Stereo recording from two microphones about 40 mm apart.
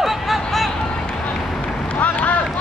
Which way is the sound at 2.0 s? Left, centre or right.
Left.